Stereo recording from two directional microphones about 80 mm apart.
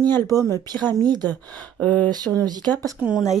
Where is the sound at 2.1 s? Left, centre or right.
Right.